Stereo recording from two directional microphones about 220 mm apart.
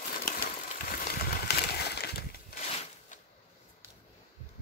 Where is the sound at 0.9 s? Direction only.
40° left (ahead or behind).